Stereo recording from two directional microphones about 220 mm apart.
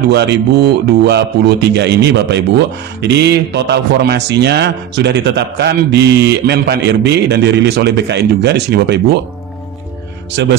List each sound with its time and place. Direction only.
0.1 s a man's voice: 50° right (ahead or behind)